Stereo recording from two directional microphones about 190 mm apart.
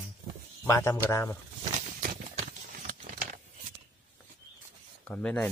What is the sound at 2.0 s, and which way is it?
Clip-clop, 45° right (ahead or behind).